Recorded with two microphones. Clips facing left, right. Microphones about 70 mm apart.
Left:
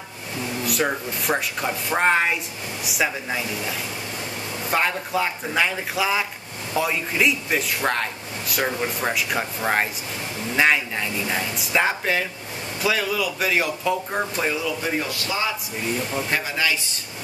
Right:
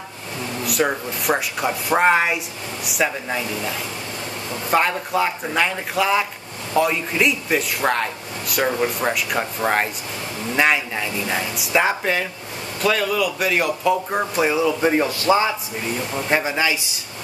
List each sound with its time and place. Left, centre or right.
0.7 s speech: centre
10.5 s speech: centre
14.8 s a man's voice: right
16.0 s speech: centre
16.3 s speech: right